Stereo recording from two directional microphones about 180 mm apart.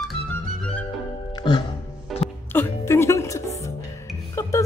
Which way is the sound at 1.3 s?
25° left (ahead or behind).